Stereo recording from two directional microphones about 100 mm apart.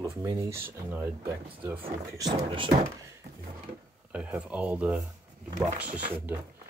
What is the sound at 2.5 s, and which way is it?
Speech, 60° right (ahead or behind).